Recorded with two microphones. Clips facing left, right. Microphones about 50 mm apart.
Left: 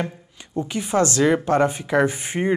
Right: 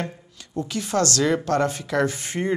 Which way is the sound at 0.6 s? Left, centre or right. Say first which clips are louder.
Left 3 dB; centre.